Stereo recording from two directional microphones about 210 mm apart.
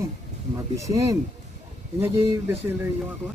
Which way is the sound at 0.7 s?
15° right (ahead or behind).